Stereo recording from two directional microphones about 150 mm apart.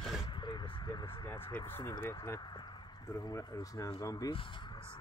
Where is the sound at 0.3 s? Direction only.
30° left (ahead or behind).